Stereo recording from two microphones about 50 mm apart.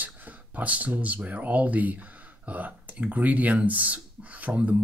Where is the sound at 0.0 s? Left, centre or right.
Right.